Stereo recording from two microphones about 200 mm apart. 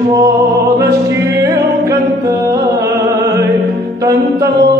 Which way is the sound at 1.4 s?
15° right (ahead or behind).